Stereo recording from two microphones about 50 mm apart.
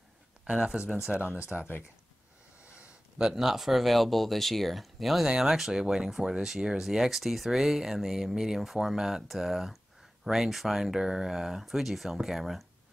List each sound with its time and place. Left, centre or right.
0.5 s speech: centre
1.5 s speech: centre
2.6 s a sound: right
3.2 s speech: centre